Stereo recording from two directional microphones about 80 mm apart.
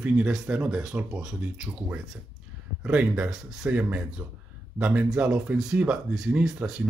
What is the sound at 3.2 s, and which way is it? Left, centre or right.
Speech, centre.